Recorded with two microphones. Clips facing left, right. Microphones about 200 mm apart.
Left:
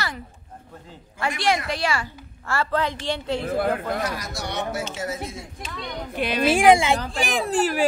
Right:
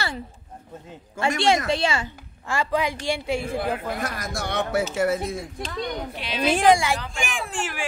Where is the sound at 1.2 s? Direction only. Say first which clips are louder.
Right 3 dB; 25° right (ahead or behind); by 3.4 s 10° right (ahead or behind).